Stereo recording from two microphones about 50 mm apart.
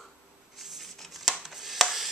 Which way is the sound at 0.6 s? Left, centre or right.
Centre.